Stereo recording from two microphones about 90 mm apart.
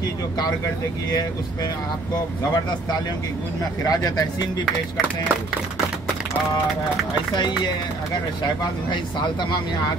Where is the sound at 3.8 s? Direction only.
45° left (ahead or behind).